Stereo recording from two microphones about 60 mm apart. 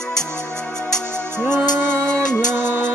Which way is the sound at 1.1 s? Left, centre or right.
Right.